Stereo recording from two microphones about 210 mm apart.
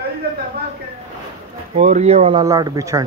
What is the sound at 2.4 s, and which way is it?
Speech, 15° right (ahead or behind).